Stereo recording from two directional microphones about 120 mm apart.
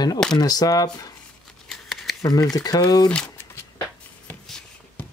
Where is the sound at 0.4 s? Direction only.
35° left (ahead or behind).